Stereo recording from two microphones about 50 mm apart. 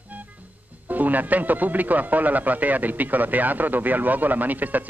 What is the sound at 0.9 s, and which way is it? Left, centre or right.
Speech, right.